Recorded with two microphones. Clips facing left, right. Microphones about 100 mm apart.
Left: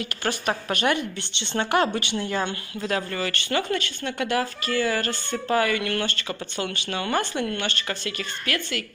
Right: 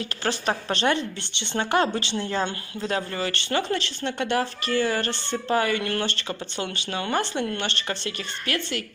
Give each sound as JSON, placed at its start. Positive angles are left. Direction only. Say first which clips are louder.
{"t": 0.5, "sound": "speech", "louder": "even", "side_deg": -25}